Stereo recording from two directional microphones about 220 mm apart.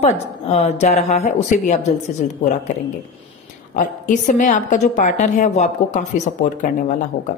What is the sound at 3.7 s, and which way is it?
A woman's voice, 35° left (ahead or behind).